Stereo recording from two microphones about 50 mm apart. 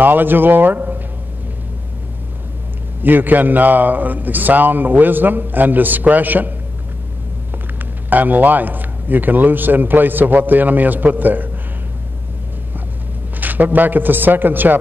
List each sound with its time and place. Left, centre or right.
0.0 s speech: right
3.0 s speech: right
7.8 s speech: right
13.4 s speech: right